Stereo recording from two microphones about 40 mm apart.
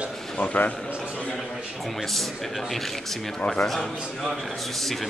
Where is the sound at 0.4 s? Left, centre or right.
Left.